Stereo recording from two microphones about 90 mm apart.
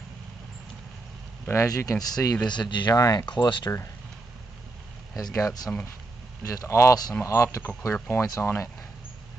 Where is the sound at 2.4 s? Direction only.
55° left (ahead or behind).